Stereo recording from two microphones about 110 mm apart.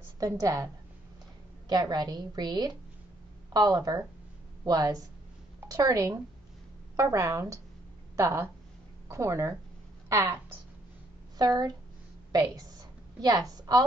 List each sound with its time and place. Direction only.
0.2 s a woman's voice: 30° right (ahead or behind)
1.7 s a woman's voice: 40° right (ahead or behind)
11.3 s a woman's voice: 35° right (ahead or behind)